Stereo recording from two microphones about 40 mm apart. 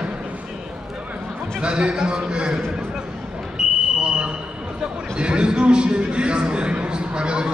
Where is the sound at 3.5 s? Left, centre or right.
Right.